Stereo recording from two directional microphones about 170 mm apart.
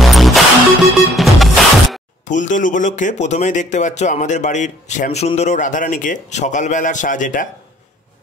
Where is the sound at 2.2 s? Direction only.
45° left (ahead or behind).